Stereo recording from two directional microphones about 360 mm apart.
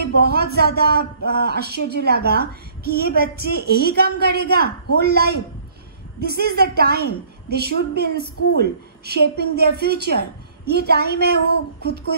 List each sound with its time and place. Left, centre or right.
0.2 s a man's voice: right